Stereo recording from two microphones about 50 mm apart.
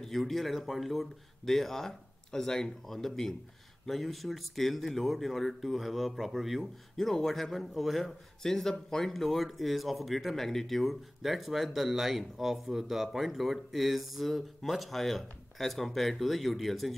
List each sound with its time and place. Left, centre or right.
0.0 s a man's voice: centre